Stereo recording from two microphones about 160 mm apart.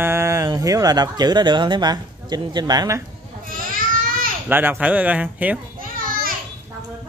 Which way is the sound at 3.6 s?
60° right (ahead or behind).